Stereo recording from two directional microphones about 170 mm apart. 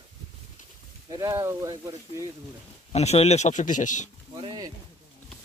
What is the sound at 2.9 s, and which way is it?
Speech, 40° left (ahead or behind).